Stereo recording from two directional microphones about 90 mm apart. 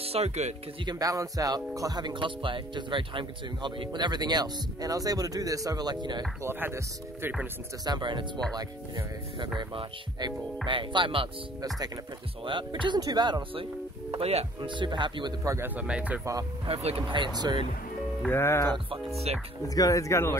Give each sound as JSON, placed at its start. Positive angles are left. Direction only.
{"t": 0.2, "sound": "speech", "side_deg": -90}
{"t": 0.8, "sound": "speech", "side_deg": -40}
{"t": 6.4, "sound": "speech", "side_deg": -25}
{"t": 7.8, "sound": "speech", "side_deg": -55}
{"t": 9.6, "sound": "speech", "side_deg": -60}
{"t": 12.4, "sound": "speech", "side_deg": -65}
{"t": 14.1, "sound": "speech", "side_deg": -75}
{"t": 15.6, "sound": "speech", "side_deg": -15}
{"t": 16.6, "sound": "speech", "side_deg": -90}
{"t": 18.3, "sound": "speech", "side_deg": 30}
{"t": 19.7, "sound": "speech", "side_deg": 40}